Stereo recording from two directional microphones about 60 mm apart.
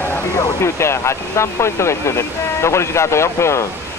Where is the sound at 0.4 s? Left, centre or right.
Left.